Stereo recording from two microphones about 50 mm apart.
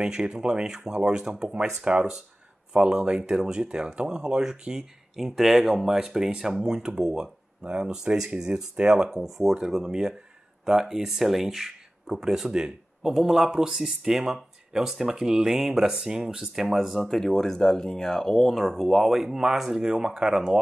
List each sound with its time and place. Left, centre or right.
0.0 s speech: centre
17.2 s speech: centre